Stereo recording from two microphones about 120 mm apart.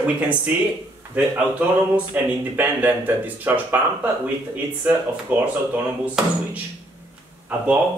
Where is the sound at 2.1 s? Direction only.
15° right (ahead or behind).